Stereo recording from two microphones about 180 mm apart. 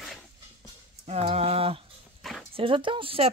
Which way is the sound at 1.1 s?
35° right (ahead or behind).